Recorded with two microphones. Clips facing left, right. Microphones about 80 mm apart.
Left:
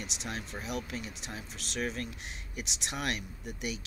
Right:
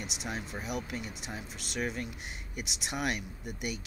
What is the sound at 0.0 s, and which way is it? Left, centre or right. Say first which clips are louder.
Speech: right 1 dB; centre.